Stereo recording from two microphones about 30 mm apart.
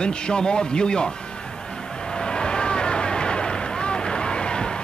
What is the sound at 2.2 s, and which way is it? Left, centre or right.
Vehicle, left.